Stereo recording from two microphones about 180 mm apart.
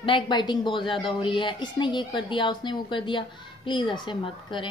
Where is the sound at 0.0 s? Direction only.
25° left (ahead or behind).